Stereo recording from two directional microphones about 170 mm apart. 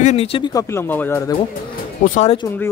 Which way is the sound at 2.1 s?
40° left (ahead or behind).